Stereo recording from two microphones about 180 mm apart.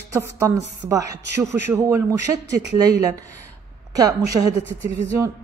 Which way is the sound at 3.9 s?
20° right (ahead or behind).